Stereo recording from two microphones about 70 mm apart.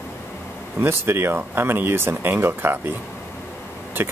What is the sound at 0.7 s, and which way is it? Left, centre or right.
Speech, right.